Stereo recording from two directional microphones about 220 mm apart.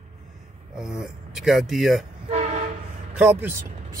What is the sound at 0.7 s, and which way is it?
Speech, 5° right (ahead or behind).